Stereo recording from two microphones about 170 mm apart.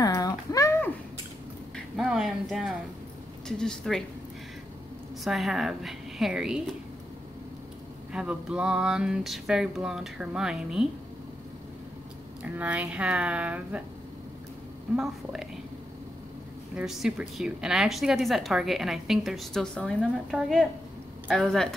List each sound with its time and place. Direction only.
0.0 s a sound: 20° left (ahead or behind)
2.0 s a sound: centre (ahead or behind)
3.4 s a woman's voice: 5° left (ahead or behind)
5.2 s a woman's voice: centre (ahead or behind)
8.1 s a woman's voice: 5° right (ahead or behind)
12.5 s speech: 10° right (ahead or behind)
16.7 s a woman's voice: centre (ahead or behind)